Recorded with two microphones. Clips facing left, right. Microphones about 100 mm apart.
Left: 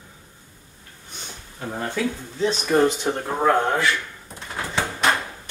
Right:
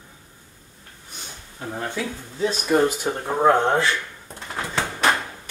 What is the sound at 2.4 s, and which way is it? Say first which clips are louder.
Speech: left 1 dB; 10° right (ahead or behind).